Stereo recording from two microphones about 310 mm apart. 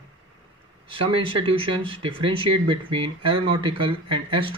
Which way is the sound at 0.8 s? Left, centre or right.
Centre.